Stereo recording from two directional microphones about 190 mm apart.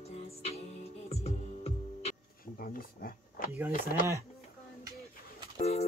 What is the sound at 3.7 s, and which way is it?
Speech, 45° left (ahead or behind).